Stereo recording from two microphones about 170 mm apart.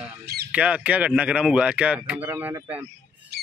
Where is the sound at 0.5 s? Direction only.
5° right (ahead or behind).